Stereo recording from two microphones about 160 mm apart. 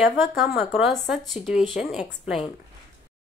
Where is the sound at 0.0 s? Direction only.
Centre (ahead or behind).